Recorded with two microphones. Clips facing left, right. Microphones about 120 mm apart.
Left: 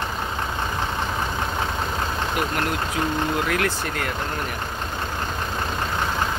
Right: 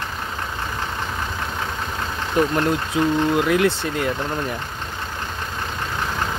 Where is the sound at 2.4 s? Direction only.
30° right (ahead or behind).